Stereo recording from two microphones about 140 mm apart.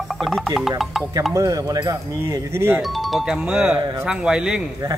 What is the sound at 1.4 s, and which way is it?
Speech, 25° right (ahead or behind).